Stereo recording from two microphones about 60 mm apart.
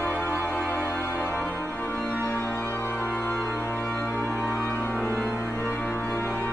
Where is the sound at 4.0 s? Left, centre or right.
Left.